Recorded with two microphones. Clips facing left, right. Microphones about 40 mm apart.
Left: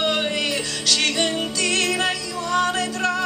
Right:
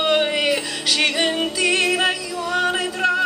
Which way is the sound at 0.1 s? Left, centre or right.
Centre.